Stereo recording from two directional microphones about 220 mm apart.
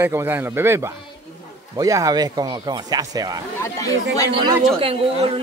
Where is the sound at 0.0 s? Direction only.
10° right (ahead or behind).